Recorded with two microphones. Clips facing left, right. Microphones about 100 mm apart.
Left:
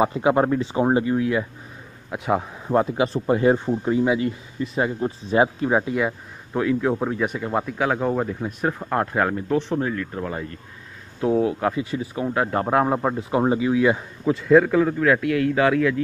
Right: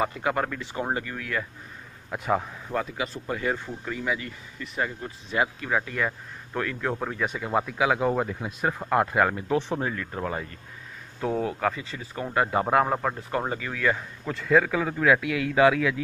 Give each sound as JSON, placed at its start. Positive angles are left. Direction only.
{"t": 0.0, "sound": "speech", "side_deg": 20}
{"t": 2.0, "sound": "a man's voice", "side_deg": 5}
{"t": 2.6, "sound": "speech", "side_deg": 30}
{"t": 5.9, "sound": "speech", "side_deg": 15}
{"t": 9.6, "sound": "speech", "side_deg": -15}
{"t": 11.1, "sound": "speech", "side_deg": 10}
{"t": 12.3, "sound": "speech", "side_deg": 0}